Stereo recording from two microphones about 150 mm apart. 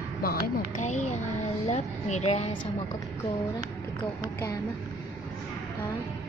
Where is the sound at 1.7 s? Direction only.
50° left (ahead or behind).